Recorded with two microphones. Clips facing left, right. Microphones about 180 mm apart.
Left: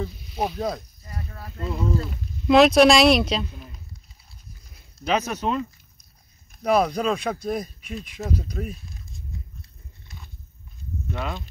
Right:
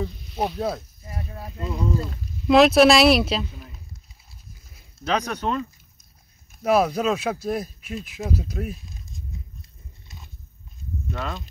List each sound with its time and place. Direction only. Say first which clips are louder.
0.0 s speech: right 1 dB; centre (ahead or behind)
1.0 s a sound: right 2 dB; 20° right (ahead or behind)
1.5 s speech: even; centre (ahead or behind)
5.0 s speech: left 1 dB; 5° left (ahead or behind)
6.6 s speech: right 1 dB; 5° right (ahead or behind)
10.0 s a sound: left 1 dB; 20° right (ahead or behind)
11.1 s speech: left 1 dB; 5° left (ahead or behind)